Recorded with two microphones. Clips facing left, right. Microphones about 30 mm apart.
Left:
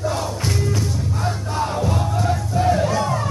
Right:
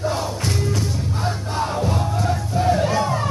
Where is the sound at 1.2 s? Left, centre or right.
Centre.